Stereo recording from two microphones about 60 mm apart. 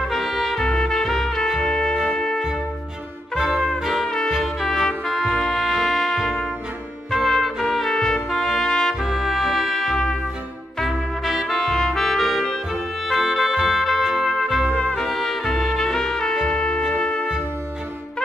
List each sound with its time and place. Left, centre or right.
0.0 s trumpet: centre
1.6 s music: centre
3.3 s music: centre
7.1 s trumpet: centre
9.0 s music: centre
15.0 s trumpet: centre
16.4 s music: centre